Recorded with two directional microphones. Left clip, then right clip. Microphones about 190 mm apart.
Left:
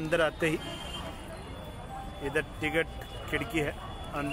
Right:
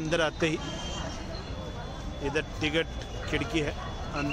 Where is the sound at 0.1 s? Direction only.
5° right (ahead or behind).